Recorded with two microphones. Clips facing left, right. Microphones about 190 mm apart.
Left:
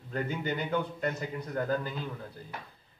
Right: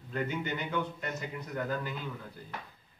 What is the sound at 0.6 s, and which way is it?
Speech, 35° left (ahead or behind).